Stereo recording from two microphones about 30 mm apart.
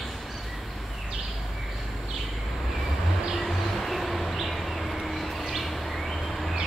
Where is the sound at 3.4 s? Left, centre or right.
Centre.